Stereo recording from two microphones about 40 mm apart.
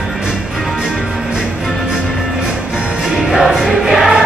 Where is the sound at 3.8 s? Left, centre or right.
Centre.